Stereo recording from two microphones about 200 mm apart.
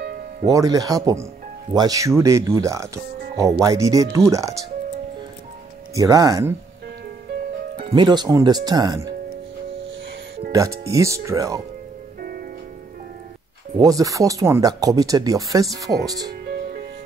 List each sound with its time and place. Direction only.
0.0 s music: 50° right (ahead or behind)
0.5 s speech: 15° right (ahead or behind)
5.9 s speech: 15° right (ahead or behind)
7.9 s speech: 20° right (ahead or behind)
10.5 s speech: 15° right (ahead or behind)
13.7 s speech: 15° right (ahead or behind)